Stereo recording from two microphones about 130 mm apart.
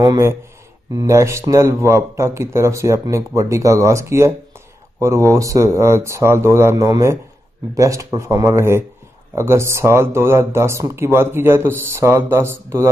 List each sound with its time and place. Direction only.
0.9 s speech: 20° right (ahead or behind)